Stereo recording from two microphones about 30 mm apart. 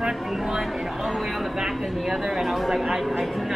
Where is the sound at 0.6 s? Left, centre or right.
Centre.